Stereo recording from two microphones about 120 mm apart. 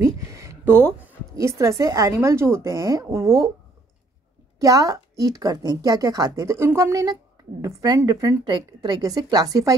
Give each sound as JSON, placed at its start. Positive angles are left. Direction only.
{"t": 0.0, "sound": "a sound", "side_deg": -25}
{"t": 1.3, "sound": "a woman's voice", "side_deg": -25}
{"t": 4.6, "sound": "a woman's voice", "side_deg": -30}